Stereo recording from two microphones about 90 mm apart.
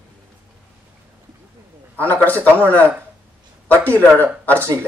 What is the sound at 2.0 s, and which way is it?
A man's voice, 20° left (ahead or behind).